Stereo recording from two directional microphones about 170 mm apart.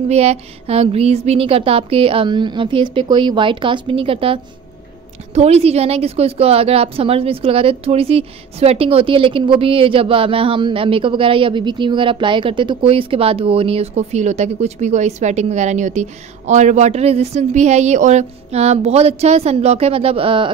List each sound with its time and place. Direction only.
0.1 s a woman's voice: 40° right (ahead or behind)